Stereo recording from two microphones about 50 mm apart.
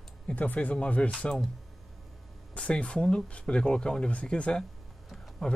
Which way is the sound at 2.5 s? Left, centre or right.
Left.